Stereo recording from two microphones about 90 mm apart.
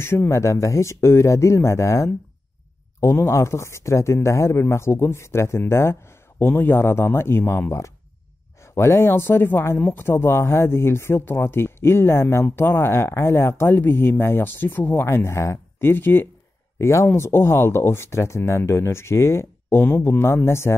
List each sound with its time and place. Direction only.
0.0 s speech: 25° left (ahead or behind)